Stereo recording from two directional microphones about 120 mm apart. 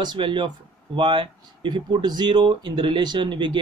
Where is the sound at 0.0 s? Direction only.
40° right (ahead or behind).